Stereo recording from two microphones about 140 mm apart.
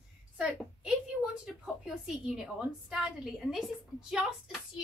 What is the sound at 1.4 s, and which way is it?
A woman's voice, 5° right (ahead or behind).